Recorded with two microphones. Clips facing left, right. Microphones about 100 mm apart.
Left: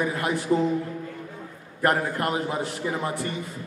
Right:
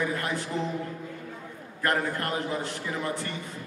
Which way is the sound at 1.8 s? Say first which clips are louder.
Left 4 dB; 20° left (ahead or behind).